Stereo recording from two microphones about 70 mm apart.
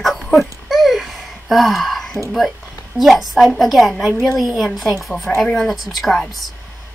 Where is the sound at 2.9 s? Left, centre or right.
Centre.